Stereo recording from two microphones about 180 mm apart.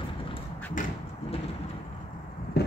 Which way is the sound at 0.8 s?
45° left (ahead or behind).